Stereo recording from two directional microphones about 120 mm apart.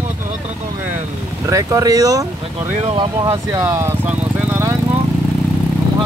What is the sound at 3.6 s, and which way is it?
Speech, 20° right (ahead or behind).